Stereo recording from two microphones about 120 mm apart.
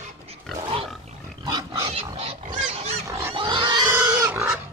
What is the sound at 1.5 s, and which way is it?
Roaring cats, 30° right (ahead or behind).